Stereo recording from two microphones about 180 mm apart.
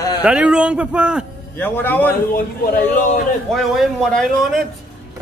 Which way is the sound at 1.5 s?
10° left (ahead or behind).